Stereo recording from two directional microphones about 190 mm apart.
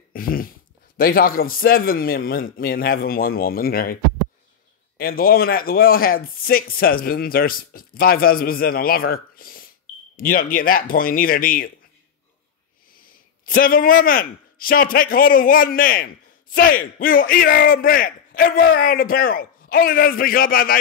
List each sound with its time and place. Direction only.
0.1 s dog: 50° left (ahead or behind)
0.9 s a man's voice: 50° left (ahead or behind)
13.5 s a man's voice: 50° left (ahead or behind)